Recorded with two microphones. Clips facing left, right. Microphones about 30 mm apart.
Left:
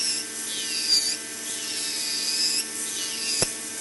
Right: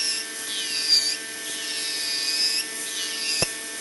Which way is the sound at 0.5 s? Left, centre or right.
Centre.